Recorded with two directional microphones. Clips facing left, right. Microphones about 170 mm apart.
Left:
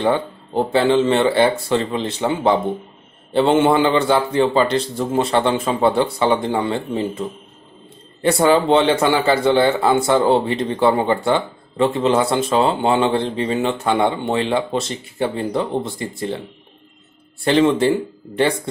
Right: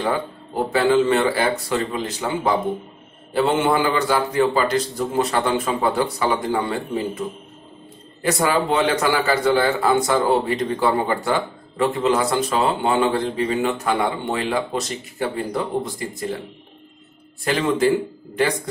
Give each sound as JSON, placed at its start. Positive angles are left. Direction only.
{"t": 0.7, "sound": "speech", "side_deg": 25}
{"t": 17.5, "sound": "speech", "side_deg": 30}